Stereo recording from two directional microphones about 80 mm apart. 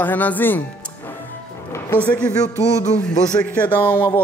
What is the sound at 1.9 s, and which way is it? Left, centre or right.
Speech, centre.